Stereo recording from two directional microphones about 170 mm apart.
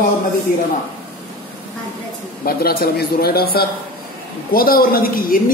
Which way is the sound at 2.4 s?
60° left (ahead or behind).